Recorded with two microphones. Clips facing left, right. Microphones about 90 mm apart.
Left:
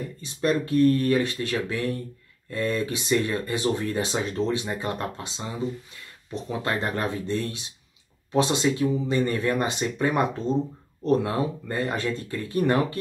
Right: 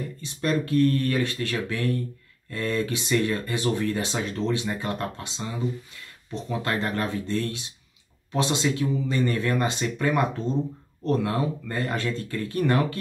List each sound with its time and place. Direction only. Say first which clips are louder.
0.2 s speech: left 2 dB; 20° left (ahead or behind)
6.6 s speech: even; 20° left (ahead or behind)